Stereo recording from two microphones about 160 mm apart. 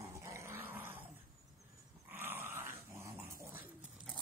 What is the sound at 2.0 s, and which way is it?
Dog, 15° right (ahead or behind).